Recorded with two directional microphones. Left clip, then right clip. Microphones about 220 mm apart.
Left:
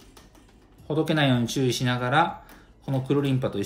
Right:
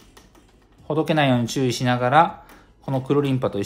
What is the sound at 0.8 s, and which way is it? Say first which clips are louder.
Speech: right 4 dB; 30° right (ahead or behind).